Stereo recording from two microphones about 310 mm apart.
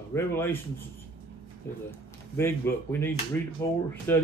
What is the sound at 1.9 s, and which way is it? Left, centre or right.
A man's voice, centre.